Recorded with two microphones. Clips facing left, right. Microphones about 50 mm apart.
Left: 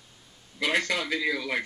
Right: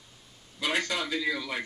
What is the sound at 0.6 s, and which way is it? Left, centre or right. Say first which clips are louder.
Speech: left 3 dB; left.